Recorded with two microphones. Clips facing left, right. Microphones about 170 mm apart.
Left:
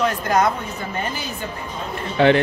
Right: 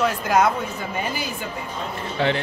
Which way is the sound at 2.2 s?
65° left (ahead or behind).